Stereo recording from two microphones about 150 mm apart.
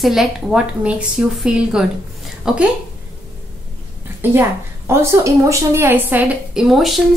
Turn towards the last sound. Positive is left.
turn(degrees=0)  # may be behind; listen again after turning